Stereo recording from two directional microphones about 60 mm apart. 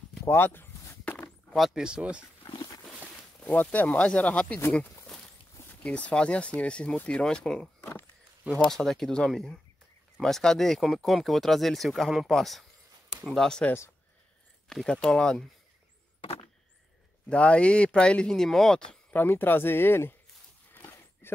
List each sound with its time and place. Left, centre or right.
0.2 s speech: left
1.5 s speech: centre
3.3 s speech: left
5.9 s speech: left
8.6 s speech: centre
14.7 s speech: centre
17.3 s speech: centre
19.2 s speech: left
20.7 s a sound: left